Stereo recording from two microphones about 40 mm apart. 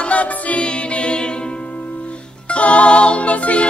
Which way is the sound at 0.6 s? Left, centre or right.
Left.